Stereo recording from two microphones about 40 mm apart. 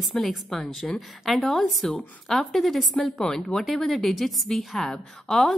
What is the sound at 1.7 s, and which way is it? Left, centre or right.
A woman's voice, centre.